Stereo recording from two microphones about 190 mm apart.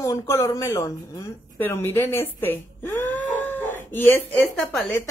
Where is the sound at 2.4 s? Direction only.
10° left (ahead or behind).